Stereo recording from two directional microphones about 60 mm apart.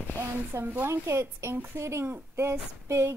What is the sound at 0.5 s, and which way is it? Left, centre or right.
A woman's voice, right.